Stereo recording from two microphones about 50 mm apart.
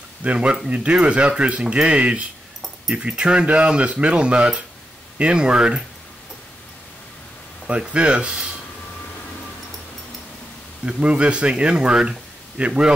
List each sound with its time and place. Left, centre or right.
0.2 s speech: right
7.9 s speech: right
10.9 s speech: right